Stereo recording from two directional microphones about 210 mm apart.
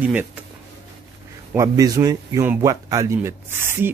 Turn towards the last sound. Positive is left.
turn(degrees=-10)  # may be behind; listen again after turning